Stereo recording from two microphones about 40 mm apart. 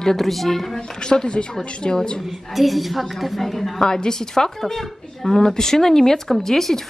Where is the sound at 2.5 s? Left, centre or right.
Centre.